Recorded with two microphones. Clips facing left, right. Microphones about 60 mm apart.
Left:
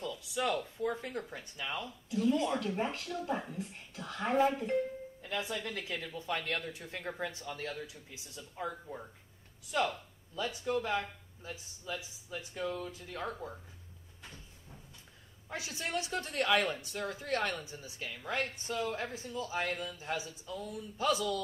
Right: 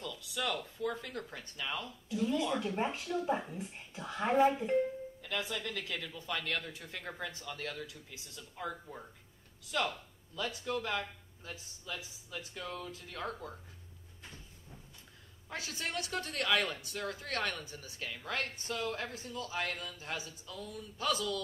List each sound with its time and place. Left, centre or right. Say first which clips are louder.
0.0 s speech: left 3 dB; left
2.1 s speech: left 2 dB; centre
5.2 s speech: left 1 dB; left
8.6 s speech: even; centre
9.7 s speech: left 2 dB; left
15.5 s speech: left 2 dB; left